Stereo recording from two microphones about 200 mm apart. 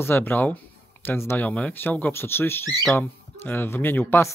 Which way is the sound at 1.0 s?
10° left (ahead or behind).